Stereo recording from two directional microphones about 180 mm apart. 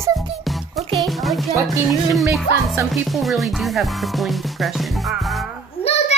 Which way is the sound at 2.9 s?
Centre (ahead or behind).